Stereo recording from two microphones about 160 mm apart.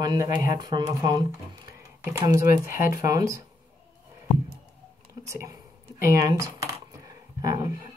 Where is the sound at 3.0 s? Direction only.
20° right (ahead or behind).